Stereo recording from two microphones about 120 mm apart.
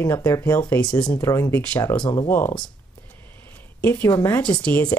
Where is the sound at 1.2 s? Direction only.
25° left (ahead or behind).